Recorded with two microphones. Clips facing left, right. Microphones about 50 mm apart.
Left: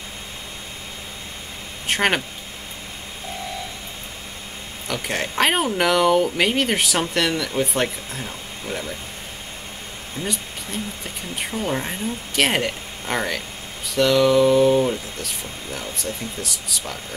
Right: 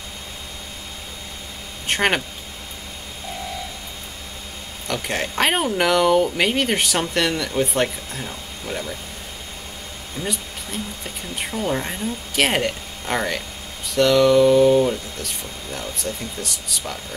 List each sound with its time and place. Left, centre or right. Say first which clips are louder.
1.9 s speech: even; centre
4.8 s speech: right 1 dB; centre
10.2 s speech: even; centre